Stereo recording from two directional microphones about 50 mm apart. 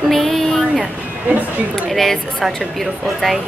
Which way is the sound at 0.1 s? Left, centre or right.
Centre.